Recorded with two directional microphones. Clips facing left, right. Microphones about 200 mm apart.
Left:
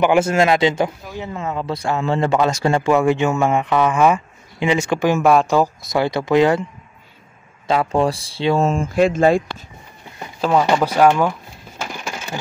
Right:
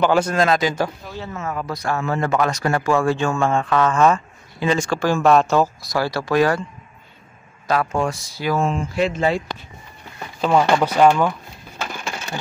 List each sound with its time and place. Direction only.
0.0 s speech: 20° left (ahead or behind)
7.6 s speech: 25° left (ahead or behind)
8.6 s speech: 50° left (ahead or behind)
10.4 s speech: 5° left (ahead or behind)
11.8 s crushing: 10° left (ahead or behind)